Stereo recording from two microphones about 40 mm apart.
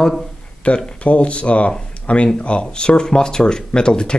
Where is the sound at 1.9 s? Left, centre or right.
Left.